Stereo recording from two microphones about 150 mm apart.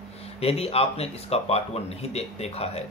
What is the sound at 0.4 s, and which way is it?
Speech, 40° left (ahead or behind).